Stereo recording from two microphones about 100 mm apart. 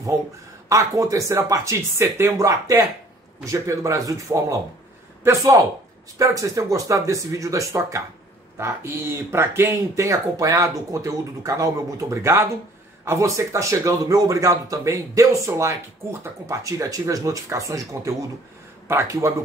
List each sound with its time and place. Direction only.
0.7 s speech: 35° right (ahead or behind)
3.4 s speech: 30° right (ahead or behind)